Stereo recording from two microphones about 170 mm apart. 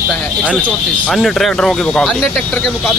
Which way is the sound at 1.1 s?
Centre (ahead or behind).